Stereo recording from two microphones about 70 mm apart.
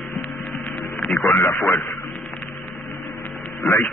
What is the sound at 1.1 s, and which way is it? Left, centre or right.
Speech, left.